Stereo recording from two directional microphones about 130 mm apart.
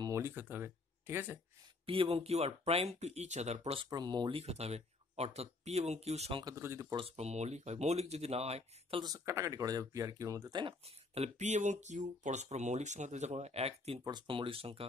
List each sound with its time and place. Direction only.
0.0 s speech: 20° right (ahead or behind)
1.9 s speech: 45° right (ahead or behind)
3.9 s speech: 35° right (ahead or behind)
4.4 s speech: 55° right (ahead or behind)
6.4 s speech: 20° right (ahead or behind)
7.1 s speech: 55° right (ahead or behind)
9.0 s speech: 25° right (ahead or behind)
11.1 s speech: 60° right (ahead or behind)
14.0 s speech: 35° right (ahead or behind)